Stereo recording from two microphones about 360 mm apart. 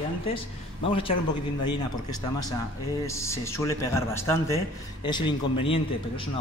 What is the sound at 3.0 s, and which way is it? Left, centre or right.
A man's voice, centre.